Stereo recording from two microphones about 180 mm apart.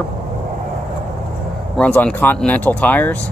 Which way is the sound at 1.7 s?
5° left (ahead or behind).